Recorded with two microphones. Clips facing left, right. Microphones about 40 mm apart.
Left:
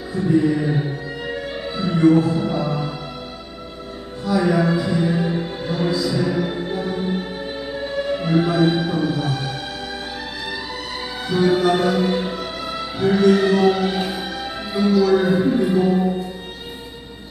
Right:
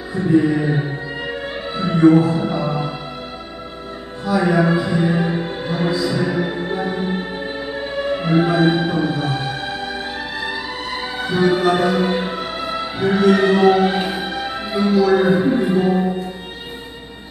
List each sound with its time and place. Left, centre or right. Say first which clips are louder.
0.1 s music: right 2 dB; right
4.3 s music: right 2 dB; right
14.9 s speech: right 1 dB; right